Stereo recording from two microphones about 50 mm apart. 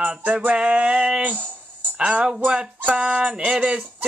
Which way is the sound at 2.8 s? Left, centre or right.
Right.